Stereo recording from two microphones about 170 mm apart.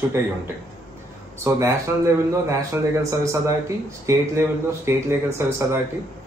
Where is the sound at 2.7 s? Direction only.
15° right (ahead or behind).